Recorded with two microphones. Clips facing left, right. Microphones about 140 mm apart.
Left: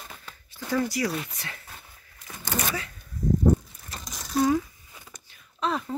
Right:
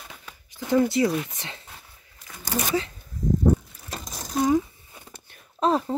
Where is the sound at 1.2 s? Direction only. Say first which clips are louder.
Right 1 dB; 20° right (ahead or behind).